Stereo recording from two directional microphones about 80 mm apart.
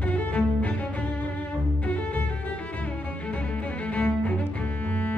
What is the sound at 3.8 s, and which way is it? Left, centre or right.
Cello, centre.